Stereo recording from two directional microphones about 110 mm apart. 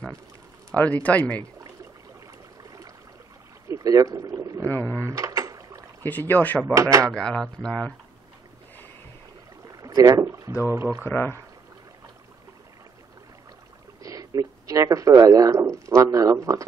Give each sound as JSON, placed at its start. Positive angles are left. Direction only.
{"t": 0.7, "sound": "speech", "side_deg": 15}
{"t": 3.6, "sound": "speech", "side_deg": -30}
{"t": 4.6, "sound": "speech", "side_deg": 15}
{"t": 4.9, "sound": "mechanisms", "side_deg": -25}
{"t": 6.0, "sound": "speech", "side_deg": 15}
{"t": 6.7, "sound": "speech", "side_deg": -30}
{"t": 7.2, "sound": "speech", "side_deg": 5}
{"t": 9.7, "sound": "rowboat", "side_deg": -35}
{"t": 10.7, "sound": "speech", "side_deg": -25}
{"t": 11.1, "sound": "speech", "side_deg": 20}
{"t": 14.0, "sound": "speech", "side_deg": -30}